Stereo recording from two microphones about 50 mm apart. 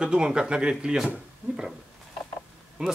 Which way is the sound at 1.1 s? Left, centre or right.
Centre.